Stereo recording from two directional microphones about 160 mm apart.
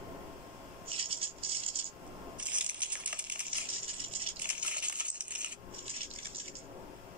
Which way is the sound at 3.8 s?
35° right (ahead or behind).